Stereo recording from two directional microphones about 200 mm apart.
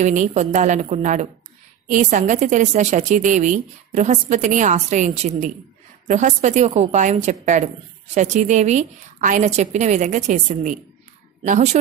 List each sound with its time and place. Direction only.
0.0 s a woman's voice: 35° right (ahead or behind)